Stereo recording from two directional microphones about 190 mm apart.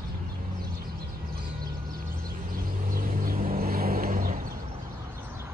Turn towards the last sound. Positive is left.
turn(degrees=-45)  # may be behind; listen again after turning